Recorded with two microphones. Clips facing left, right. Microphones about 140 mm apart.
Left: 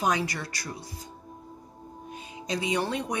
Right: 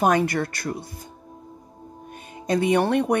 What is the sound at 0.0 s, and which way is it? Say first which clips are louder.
Speech: right 8 dB; 55° right (ahead or behind).